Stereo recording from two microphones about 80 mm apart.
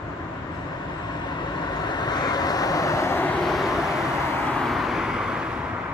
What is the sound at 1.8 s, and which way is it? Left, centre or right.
Vehicle, left.